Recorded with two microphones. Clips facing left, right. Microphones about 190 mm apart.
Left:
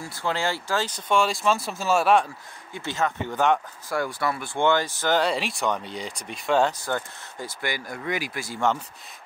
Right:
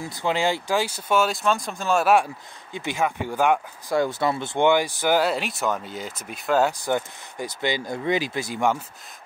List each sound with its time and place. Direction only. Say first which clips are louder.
0.0 s speech: right 4 dB; 15° right (ahead or behind)
2.7 s speech: right 2 dB; 15° right (ahead or behind)
3.9 s speech: right 4 dB; 20° right (ahead or behind); by 6.7 s centre (ahead or behind)
6.8 s speech: right 4 dB; 15° right (ahead or behind)